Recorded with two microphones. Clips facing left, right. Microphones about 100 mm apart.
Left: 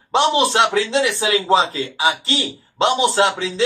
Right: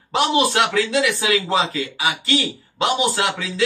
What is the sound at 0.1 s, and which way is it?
A man's voice, 30° left (ahead or behind).